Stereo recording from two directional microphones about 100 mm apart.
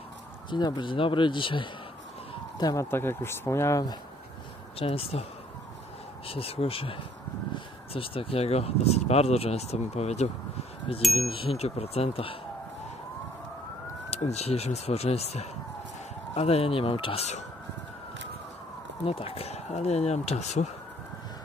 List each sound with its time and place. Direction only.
0.5 s speech: 45° left (ahead or behind)
2.6 s speech: 30° left (ahead or behind)
4.7 s speech: 70° left (ahead or behind)
6.2 s speech: 75° left (ahead or behind); by 10.3 s 90° left
11.0 s chime: centre (ahead or behind)
11.2 s speech: 60° left (ahead or behind)
14.1 s speech: 90° left; by 17.3 s 70° left (ahead or behind)
19.0 s speech: 80° left